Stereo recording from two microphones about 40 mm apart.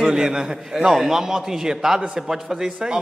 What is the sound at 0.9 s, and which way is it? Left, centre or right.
A man's voice, centre.